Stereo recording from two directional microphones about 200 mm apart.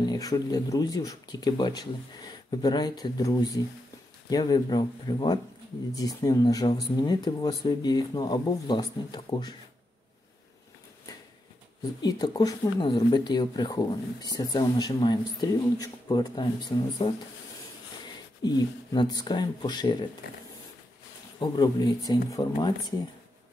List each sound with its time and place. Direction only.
0.0 s speech: 20° left (ahead or behind)
12.0 s speech: 20° left (ahead or behind)
18.4 s speech: 20° left (ahead or behind)
21.4 s speech: 20° left (ahead or behind)